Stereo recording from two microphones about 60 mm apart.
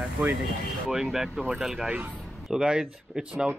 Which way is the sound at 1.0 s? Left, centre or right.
Centre.